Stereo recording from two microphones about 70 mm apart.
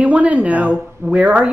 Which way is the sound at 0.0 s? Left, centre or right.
Right.